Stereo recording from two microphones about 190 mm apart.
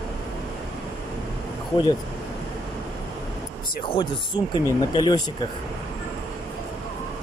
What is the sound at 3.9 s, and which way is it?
Speech, 25° left (ahead or behind).